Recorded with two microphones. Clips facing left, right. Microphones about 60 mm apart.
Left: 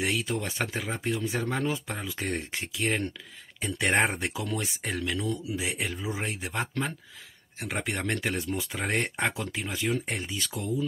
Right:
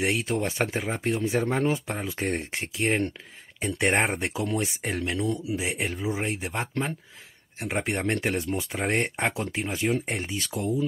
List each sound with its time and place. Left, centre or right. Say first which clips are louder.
0.0 s speech: right 3 dB; right
4.1 s speech: right 4 dB; right
8.7 s speech: right 3 dB; right